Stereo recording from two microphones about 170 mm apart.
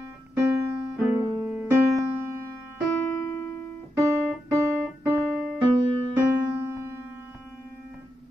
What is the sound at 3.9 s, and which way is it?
Keyboard, 15° right (ahead or behind).